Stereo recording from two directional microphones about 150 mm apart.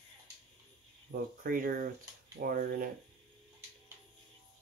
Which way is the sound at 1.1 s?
90° right.